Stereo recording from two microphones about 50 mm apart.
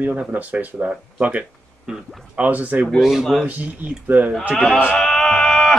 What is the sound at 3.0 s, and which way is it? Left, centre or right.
Speech, centre.